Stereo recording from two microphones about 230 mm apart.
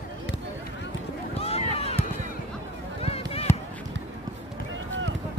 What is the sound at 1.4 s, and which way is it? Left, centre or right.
Run, left.